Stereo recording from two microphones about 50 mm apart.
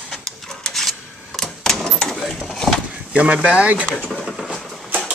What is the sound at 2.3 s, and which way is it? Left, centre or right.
Speech, centre.